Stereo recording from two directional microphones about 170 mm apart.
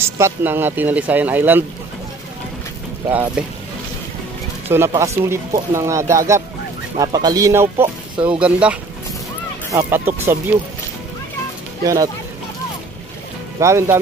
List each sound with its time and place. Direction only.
0.2 s speech: 10° right (ahead or behind)
3.4 s speech: 5° right (ahead or behind)
4.6 s speech: 15° right (ahead or behind)
11.8 s speech: 20° right (ahead or behind)
13.6 s speech: 15° right (ahead or behind)